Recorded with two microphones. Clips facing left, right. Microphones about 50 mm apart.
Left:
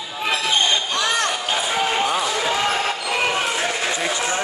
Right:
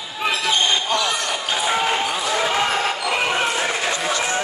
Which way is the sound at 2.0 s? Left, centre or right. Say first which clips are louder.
Left 3 dB; centre.